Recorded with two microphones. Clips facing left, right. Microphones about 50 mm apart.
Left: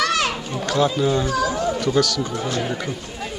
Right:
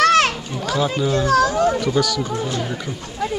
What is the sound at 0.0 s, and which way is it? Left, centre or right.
Children playing, right.